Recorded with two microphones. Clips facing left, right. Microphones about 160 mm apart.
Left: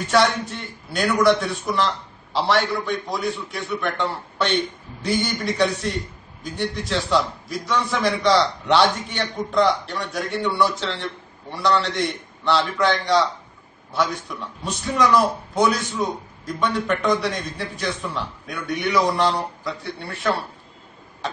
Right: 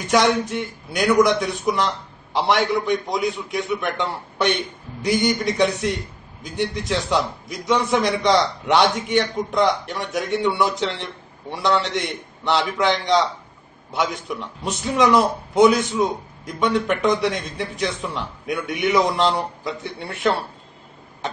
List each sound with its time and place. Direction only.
0.1 s a man's voice: 15° right (ahead or behind)